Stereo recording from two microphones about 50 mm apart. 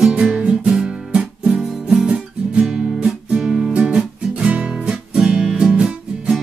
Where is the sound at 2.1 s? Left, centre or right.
Centre.